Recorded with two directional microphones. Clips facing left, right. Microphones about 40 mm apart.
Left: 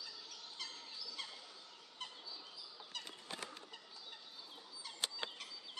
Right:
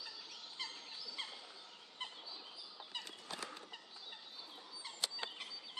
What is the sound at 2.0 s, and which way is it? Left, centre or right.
Bird vocalization, right.